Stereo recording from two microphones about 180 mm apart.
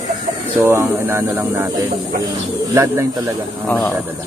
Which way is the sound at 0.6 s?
15° right (ahead or behind).